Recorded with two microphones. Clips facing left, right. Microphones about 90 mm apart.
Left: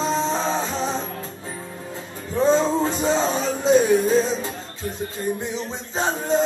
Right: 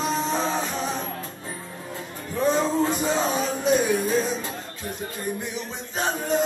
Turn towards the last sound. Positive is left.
turn(degrees=25)  # may be behind; listen again after turning